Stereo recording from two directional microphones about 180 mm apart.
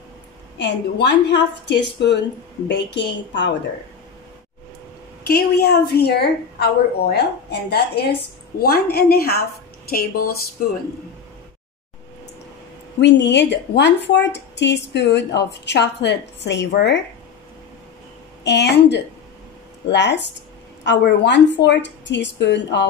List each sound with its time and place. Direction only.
0.6 s a woman's voice: 75° left (ahead or behind)
5.2 s a woman's voice: 60° left (ahead or behind)
13.0 s a woman's voice: 75° left (ahead or behind)
18.4 s a woman's voice: 70° left (ahead or behind)